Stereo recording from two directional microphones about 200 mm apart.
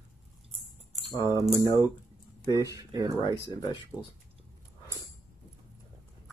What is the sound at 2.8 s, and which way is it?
Speech, 20° right (ahead or behind).